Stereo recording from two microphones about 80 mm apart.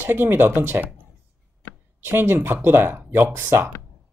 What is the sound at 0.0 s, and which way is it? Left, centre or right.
Speech, right.